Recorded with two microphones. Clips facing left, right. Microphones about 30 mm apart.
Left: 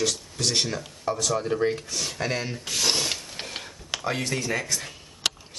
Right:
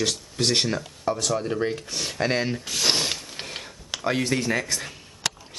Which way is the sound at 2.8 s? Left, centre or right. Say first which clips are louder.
Right 2 dB; centre.